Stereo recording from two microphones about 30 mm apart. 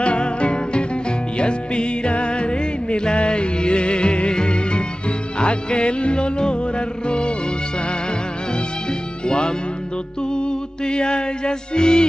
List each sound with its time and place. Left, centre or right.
0.0 s music: left
9.2 s music: left